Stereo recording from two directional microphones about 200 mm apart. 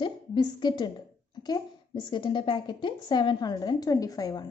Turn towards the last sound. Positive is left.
turn(degrees=20)  # may be behind; listen again after turning